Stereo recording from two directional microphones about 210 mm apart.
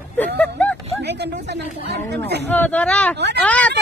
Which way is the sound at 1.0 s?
55° right (ahead or behind).